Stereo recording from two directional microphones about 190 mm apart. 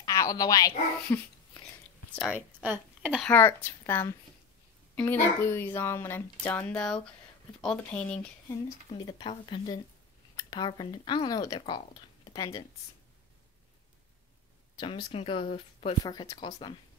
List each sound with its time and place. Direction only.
0.0 s a child's voice: 20° left (ahead or behind)
2.1 s a woman's voice: 5° right (ahead or behind)
3.2 s speech: 10° left (ahead or behind)
8.9 s speech: 25° left (ahead or behind)
14.8 s speech: 25° left (ahead or behind)